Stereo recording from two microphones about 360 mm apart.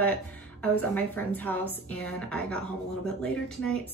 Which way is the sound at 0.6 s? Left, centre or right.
Centre.